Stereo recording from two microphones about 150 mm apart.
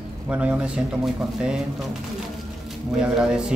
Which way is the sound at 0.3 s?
10° right (ahead or behind).